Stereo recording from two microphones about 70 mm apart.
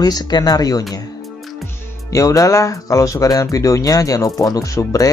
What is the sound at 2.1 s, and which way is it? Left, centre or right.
Speech, left.